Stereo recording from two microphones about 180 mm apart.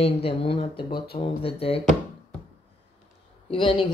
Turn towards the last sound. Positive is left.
turn(degrees=30)  # may be behind; listen again after turning